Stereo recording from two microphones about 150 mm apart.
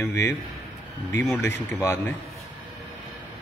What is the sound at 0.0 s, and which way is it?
Speech, 15° left (ahead or behind).